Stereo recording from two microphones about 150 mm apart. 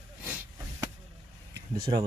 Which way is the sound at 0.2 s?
15° right (ahead or behind).